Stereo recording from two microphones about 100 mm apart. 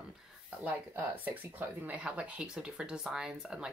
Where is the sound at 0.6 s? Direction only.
15° right (ahead or behind).